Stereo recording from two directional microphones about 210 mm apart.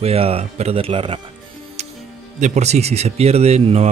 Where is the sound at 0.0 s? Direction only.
30° right (ahead or behind).